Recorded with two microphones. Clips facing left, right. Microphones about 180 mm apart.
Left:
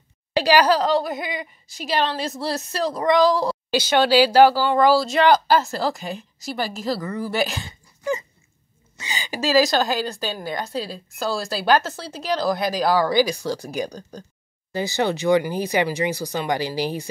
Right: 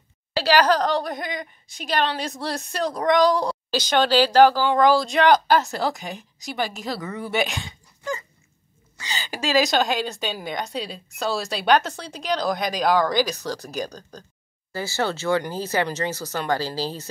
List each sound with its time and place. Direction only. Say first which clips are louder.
0.3 s a woman's voice: left 2 dB; 15° left (ahead or behind)
8.0 s a sound: left 5 dB; 20° left (ahead or behind)
8.9 s a woman's voice: left 2 dB; 15° left (ahead or behind)